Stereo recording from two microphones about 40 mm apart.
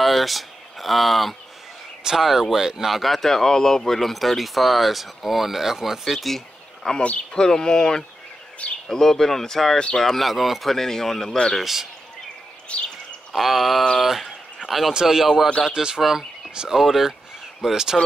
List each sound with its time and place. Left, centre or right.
0.0 s a sound: centre
2.0 s a man's voice: centre
6.3 s a sound: centre
7.3 s speech: centre
8.6 s speech: left
8.9 s speech: centre
11.6 s a man's voice: centre
12.6 s bird: left
13.3 s a man's voice: centre
15.7 s speech: centre
16.0 s a man's voice: centre